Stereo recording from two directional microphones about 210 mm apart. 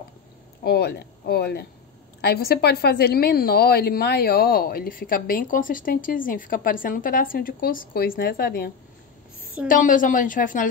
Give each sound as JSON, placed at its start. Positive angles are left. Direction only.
{"t": 0.7, "sound": "a woman's voice", "side_deg": 50}